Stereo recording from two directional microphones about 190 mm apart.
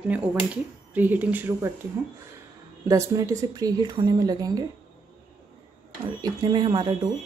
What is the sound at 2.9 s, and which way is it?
Speech, 15° right (ahead or behind).